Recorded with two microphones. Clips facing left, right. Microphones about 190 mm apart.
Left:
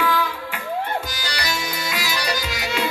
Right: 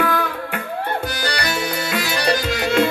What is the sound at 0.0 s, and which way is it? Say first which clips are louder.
Music: right 2 dB; 55° right (ahead or behind).